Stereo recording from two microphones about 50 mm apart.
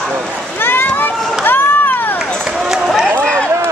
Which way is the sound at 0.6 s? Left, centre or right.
Left.